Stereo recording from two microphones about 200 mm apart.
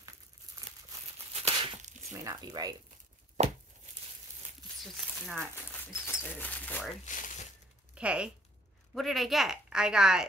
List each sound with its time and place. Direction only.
1.3 s crumpling: 30° right (ahead or behind)
2.1 s speech: 20° right (ahead or behind)
4.9 s speech: centre (ahead or behind)
6.0 s speech: 10° left (ahead or behind)
7.1 s speech: 40° left (ahead or behind)
7.9 s speech: 5° right (ahead or behind)